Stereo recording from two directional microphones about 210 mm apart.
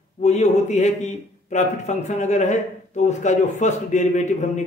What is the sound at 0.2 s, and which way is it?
A man's voice, 30° left (ahead or behind).